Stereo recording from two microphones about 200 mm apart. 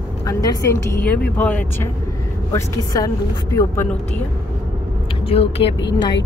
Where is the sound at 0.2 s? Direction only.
15° left (ahead or behind).